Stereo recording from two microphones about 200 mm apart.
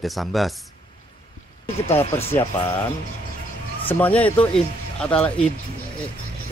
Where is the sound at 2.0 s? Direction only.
30° left (ahead or behind).